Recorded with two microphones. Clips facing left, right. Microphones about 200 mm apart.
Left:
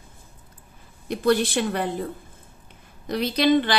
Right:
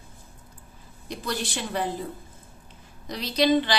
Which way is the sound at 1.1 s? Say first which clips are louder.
Left 10 dB; 55° left (ahead or behind).